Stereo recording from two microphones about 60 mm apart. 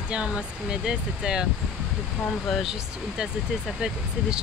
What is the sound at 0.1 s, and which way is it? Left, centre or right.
Speech, centre.